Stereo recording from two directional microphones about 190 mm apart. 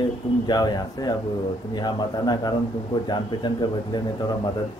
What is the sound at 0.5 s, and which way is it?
A man's voice, 20° left (ahead or behind).